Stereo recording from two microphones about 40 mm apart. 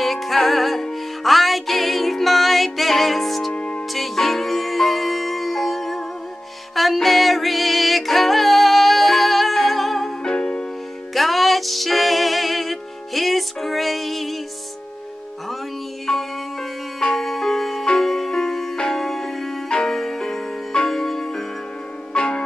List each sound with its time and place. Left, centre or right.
0.0 s music: centre
3.5 s music: left
3.9 s music: centre
10.2 s music: left
11.1 s music: centre
16.1 s music: centre
22.1 s music: left